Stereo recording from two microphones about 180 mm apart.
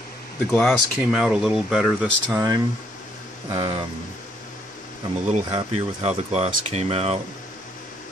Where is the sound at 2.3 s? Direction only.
20° right (ahead or behind).